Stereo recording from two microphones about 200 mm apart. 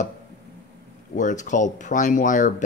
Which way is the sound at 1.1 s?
40° left (ahead or behind).